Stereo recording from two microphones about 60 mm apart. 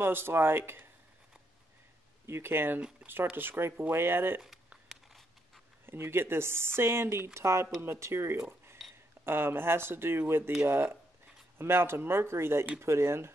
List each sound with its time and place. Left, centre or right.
0.0 s speech: right
2.2 s speech: right
5.9 s speech: right